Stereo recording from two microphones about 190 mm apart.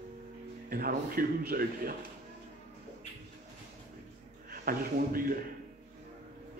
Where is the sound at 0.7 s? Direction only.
50° right (ahead or behind).